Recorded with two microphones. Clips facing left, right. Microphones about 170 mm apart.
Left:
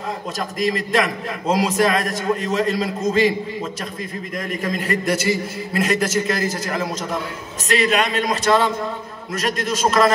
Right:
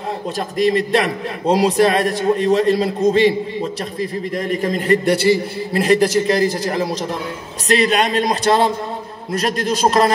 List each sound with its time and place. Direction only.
0.6 s a man's voice: 35° right (ahead or behind)